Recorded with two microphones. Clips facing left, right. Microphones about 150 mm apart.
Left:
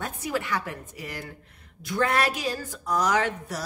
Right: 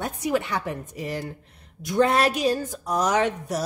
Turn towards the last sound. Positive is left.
turn(degrees=-20)  # may be behind; listen again after turning